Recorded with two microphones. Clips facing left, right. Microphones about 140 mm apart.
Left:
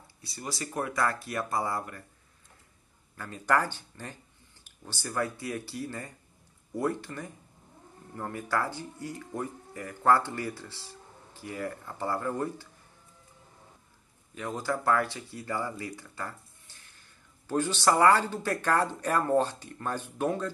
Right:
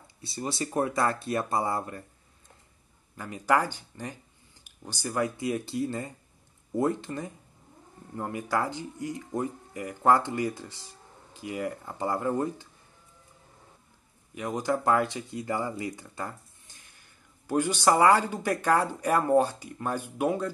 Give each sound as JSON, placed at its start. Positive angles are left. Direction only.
{"t": 0.2, "sound": "speech", "side_deg": -25}
{"t": 3.2, "sound": "speech", "side_deg": -15}
{"t": 14.3, "sound": "speech", "side_deg": -15}
{"t": 15.8, "sound": "a sound", "side_deg": -20}
{"t": 17.5, "sound": "speech", "side_deg": -10}